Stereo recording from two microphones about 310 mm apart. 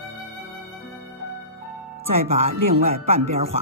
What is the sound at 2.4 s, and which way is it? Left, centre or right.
Speech, centre.